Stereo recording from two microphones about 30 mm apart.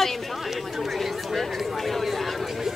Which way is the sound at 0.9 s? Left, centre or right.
Centre.